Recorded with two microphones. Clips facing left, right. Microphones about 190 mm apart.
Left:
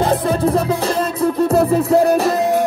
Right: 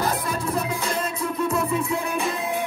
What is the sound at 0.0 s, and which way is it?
Music, 30° left (ahead or behind).